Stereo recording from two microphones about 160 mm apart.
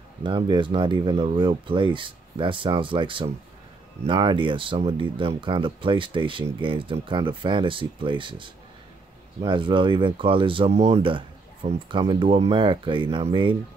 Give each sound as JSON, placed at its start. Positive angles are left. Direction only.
{"t": 0.2, "sound": "speech", "side_deg": -30}